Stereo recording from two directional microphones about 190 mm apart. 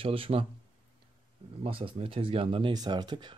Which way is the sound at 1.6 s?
30° right (ahead or behind).